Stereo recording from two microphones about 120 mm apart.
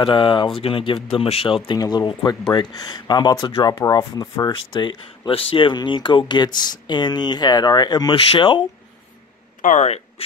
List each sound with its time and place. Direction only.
0.0 s speech: 45° left (ahead or behind)
1.8 s speech: 35° left (ahead or behind)
9.6 s speech: 85° left; by 10.2 s 60° left (ahead or behind)